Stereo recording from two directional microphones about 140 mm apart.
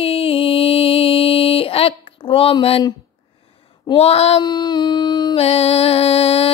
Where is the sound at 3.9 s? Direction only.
45° left (ahead or behind).